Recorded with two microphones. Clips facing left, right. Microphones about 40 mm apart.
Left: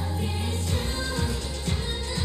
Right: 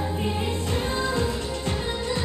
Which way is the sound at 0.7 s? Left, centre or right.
Right.